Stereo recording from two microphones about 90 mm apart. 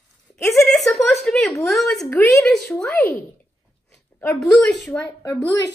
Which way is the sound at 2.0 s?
15° left (ahead or behind).